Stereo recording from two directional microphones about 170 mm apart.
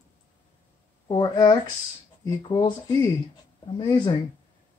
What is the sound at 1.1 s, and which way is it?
Speech, 25° left (ahead or behind).